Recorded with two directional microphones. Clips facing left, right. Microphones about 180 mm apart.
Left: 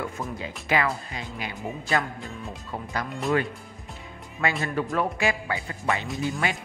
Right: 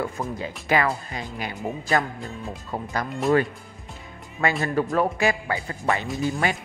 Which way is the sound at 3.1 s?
Centre (ahead or behind).